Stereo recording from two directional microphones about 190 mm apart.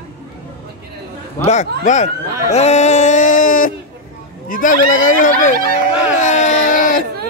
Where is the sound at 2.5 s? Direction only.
35° left (ahead or behind).